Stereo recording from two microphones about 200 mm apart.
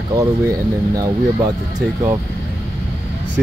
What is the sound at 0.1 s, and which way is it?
Speech, 20° right (ahead or behind).